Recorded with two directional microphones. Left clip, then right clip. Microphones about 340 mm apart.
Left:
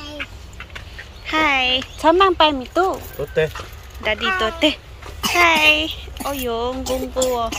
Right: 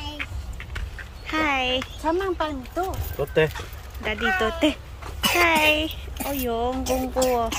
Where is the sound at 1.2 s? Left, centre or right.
Centre.